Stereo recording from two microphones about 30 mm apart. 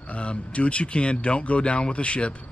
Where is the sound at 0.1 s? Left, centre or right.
Left.